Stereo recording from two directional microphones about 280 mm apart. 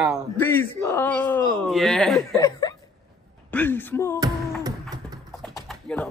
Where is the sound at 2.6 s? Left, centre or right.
Centre.